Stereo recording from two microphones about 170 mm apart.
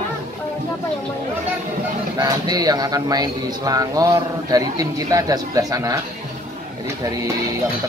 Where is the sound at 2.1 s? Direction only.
25° right (ahead or behind).